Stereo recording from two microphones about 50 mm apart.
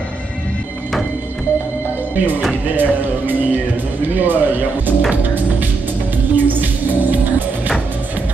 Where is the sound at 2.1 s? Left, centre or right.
Right.